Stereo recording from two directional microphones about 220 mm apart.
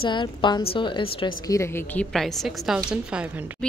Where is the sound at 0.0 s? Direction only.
20° left (ahead or behind).